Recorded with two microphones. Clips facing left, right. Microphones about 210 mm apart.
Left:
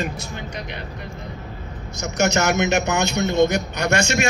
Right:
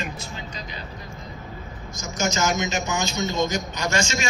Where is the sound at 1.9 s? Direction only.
65° left (ahead or behind).